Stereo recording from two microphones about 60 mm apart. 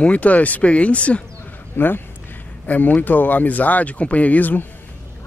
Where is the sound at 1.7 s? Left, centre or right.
Left.